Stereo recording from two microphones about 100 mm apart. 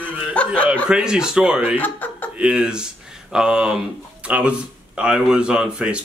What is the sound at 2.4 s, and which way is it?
Speech, 10° right (ahead or behind).